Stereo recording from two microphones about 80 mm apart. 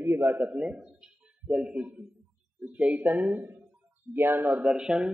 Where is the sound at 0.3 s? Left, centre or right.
Centre.